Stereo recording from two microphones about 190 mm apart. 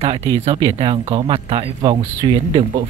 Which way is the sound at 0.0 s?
30° right (ahead or behind).